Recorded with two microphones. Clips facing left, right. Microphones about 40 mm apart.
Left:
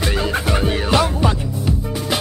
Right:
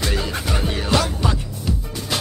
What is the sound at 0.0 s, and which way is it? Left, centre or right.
Music, centre.